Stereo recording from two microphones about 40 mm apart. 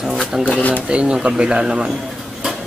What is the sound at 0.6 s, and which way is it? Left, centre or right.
Speech, left.